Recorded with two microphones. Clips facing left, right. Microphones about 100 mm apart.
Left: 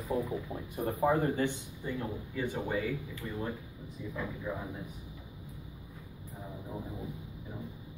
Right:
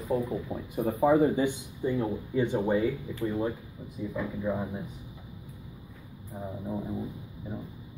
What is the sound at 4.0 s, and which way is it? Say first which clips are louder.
Speech: right 7 dB; 10° right (ahead or behind).